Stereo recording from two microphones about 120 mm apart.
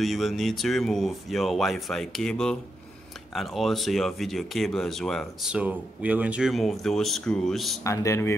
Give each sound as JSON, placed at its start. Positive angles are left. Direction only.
{"t": 0.0, "sound": "speech", "side_deg": 0}
{"t": 5.5, "sound": "speech", "side_deg": -10}
{"t": 7.8, "sound": "speech", "side_deg": 25}